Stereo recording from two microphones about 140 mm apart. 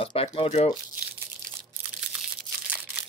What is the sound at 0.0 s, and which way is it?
Speech, 45° left (ahead or behind).